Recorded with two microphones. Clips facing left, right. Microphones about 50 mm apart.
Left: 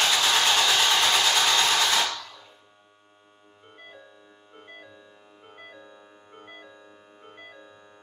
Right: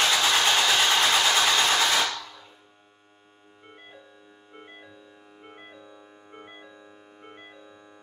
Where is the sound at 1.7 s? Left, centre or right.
Centre.